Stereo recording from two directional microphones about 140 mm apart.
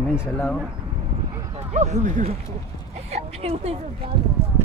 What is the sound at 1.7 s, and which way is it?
Speech, 60° right (ahead or behind).